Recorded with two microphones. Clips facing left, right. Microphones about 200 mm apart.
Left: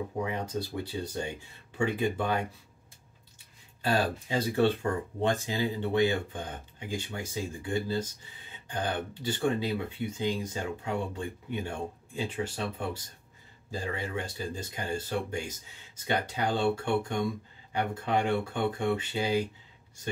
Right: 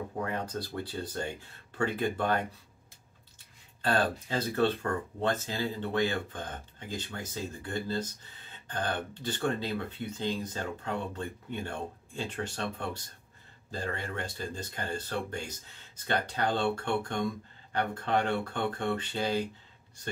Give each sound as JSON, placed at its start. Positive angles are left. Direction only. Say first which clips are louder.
{"t": 0.2, "sound": "speech", "louder": "left 1 dB", "side_deg": 10}
{"t": 3.8, "sound": "speech", "louder": "even", "side_deg": 10}